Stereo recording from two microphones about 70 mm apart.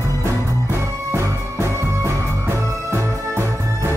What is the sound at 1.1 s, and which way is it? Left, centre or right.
Music, right.